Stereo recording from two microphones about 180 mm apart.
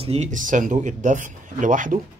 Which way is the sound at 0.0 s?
35° right (ahead or behind).